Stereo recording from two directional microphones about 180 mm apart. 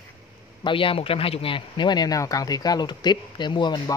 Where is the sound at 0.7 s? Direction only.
30° left (ahead or behind).